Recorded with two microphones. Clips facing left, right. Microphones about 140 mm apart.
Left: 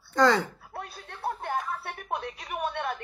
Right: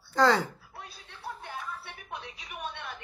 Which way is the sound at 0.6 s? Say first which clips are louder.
Left 7 dB; 55° left (ahead or behind).